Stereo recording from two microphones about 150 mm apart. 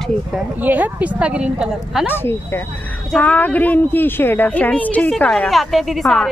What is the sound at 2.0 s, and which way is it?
A woman's voice, 15° left (ahead or behind).